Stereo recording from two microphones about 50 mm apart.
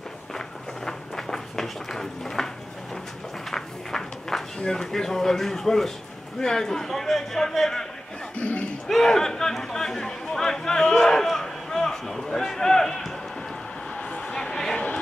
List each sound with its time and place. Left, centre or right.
0.8 s a sound: centre
3.4 s run: centre
4.6 s a man's voice: centre
8.4 s speech: left
8.8 s speech: centre
13.9 s a sound: centre